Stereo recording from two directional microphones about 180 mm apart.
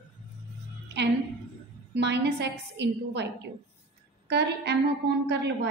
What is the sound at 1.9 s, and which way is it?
A woman's voice, 70° right (ahead or behind).